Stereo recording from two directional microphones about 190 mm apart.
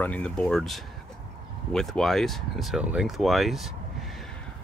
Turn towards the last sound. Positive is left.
turn(degrees=0)  # may be behind; listen again after turning